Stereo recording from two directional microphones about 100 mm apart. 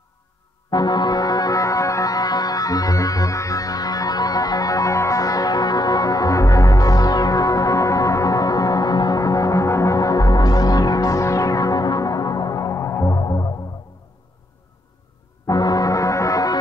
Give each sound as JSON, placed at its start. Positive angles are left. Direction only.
{"t": 0.7, "sound": "music", "side_deg": 45}
{"t": 15.4, "sound": "music", "side_deg": 40}